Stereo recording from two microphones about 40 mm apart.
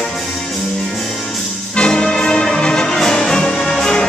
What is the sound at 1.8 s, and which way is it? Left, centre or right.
Music, left.